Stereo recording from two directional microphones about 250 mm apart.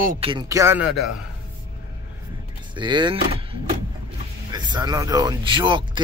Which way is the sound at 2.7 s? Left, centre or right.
Centre.